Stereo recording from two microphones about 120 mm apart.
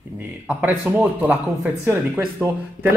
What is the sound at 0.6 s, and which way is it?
Speech, 15° right (ahead or behind).